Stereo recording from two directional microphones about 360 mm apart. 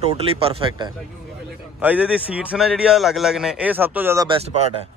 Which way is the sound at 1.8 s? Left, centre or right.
Centre.